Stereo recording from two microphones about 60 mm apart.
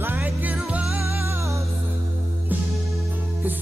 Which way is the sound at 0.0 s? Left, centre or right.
Right.